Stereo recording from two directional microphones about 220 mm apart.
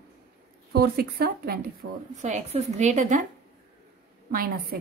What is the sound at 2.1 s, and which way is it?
A woman's voice, 35° right (ahead or behind).